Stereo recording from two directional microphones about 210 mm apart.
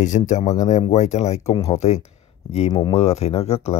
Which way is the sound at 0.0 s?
35° left (ahead or behind).